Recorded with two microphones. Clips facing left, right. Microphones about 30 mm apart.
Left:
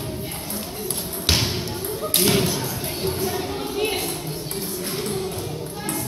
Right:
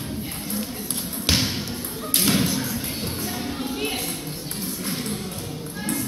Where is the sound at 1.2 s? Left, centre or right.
Left.